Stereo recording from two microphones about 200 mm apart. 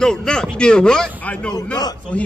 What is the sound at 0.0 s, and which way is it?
A man's voice, 5° left (ahead or behind).